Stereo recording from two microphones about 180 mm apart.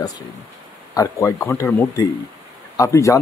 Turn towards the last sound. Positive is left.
turn(degrees=15)  # may be behind; listen again after turning